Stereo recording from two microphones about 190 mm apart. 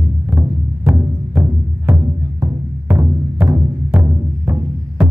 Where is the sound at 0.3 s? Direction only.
10° right (ahead or behind).